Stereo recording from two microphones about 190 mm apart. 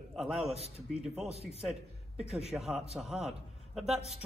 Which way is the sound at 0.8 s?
5° right (ahead or behind).